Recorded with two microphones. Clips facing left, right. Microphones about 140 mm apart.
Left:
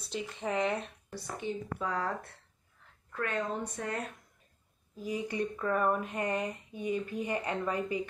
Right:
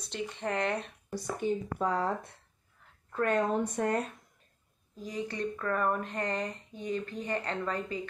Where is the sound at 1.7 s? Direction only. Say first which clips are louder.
Right 2 dB; 30° right (ahead or behind).